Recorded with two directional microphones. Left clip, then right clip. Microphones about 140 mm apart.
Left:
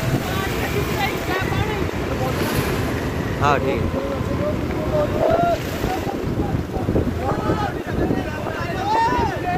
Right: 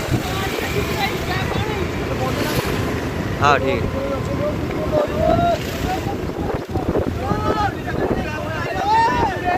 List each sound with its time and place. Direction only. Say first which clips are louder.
3.4 s speech: right 3 dB; 10° left (ahead or behind)
8.8 s vehicle: right 3 dB; 55° right (ahead or behind)